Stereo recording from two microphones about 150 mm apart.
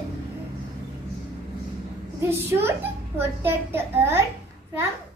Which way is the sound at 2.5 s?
15° right (ahead or behind).